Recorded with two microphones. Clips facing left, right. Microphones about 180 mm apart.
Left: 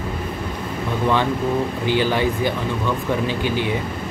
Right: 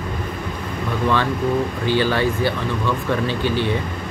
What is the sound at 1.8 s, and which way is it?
Speech, 15° left (ahead or behind).